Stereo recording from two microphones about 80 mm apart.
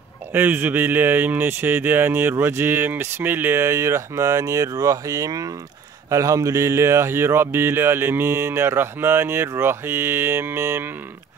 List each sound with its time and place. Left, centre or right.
0.3 s speech: right